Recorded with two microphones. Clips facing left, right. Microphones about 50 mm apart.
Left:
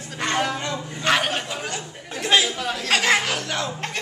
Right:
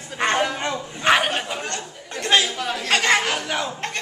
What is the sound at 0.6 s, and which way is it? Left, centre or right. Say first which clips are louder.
Bow-wow: right 2 dB; right.